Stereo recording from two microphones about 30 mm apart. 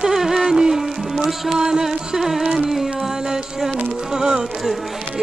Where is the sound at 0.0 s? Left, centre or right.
Centre.